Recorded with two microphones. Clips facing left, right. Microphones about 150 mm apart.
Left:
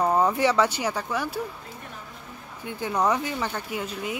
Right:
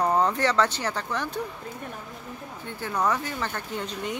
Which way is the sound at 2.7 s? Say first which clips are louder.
Left 2 dB; 15° left (ahead or behind).